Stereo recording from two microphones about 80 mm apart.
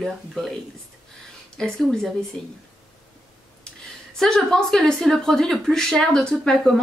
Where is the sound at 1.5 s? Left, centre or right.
Centre.